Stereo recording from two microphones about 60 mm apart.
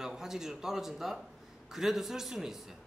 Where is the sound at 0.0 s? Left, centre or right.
Centre.